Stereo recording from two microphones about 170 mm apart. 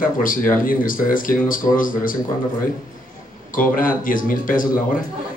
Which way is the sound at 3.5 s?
55° left (ahead or behind).